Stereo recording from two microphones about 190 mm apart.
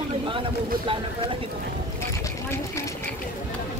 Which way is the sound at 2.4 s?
15° left (ahead or behind).